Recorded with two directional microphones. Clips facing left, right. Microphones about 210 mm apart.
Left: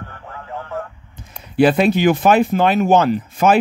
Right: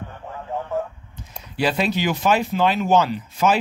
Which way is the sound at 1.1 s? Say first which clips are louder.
Left 15 dB; 55° left (ahead or behind).